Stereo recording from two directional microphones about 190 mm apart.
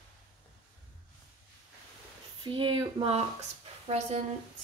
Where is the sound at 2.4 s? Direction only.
25° right (ahead or behind).